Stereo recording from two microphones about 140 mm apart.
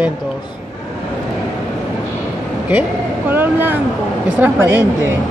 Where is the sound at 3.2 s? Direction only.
15° right (ahead or behind).